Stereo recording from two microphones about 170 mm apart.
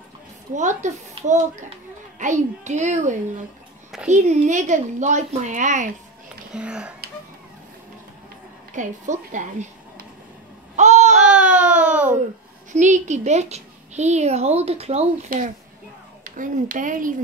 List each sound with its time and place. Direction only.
0.6 s a woman's voice: 45° right (ahead or behind)
6.5 s speech: 5° right (ahead or behind)
8.7 s a woman's voice: 45° right (ahead or behind)
10.8 s babbling: 40° right (ahead or behind)
11.1 s baby cry: 5° right (ahead or behind)
12.7 s a woman's voice: 45° right (ahead or behind)
15.3 s a woman's voice: 60° right (ahead or behind)